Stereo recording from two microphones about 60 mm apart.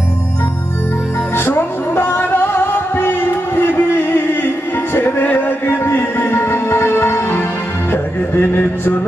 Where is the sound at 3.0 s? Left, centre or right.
Left.